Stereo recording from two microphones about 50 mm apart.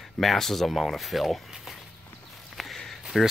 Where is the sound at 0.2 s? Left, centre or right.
Centre.